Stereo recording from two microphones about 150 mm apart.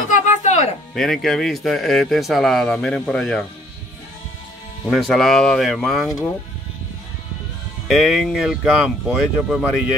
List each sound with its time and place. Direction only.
0.1 s music: 55° left (ahead or behind)
0.9 s speech: centre (ahead or behind)
4.8 s speech: centre (ahead or behind)
7.9 s speech: centre (ahead or behind)